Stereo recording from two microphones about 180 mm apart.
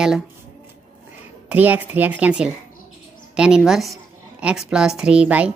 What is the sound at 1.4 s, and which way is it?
A woman's voice, 10° right (ahead or behind).